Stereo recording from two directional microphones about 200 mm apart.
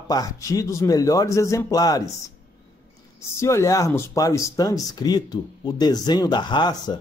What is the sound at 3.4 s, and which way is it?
Speech, 15° left (ahead or behind).